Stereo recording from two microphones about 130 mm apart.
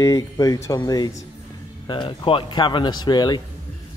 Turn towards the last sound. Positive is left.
turn(degrees=35)  # may be behind; listen again after turning